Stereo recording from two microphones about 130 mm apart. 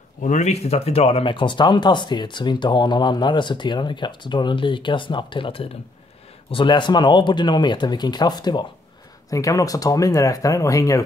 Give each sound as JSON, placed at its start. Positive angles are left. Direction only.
{"t": 0.2, "sound": "speech", "side_deg": 65}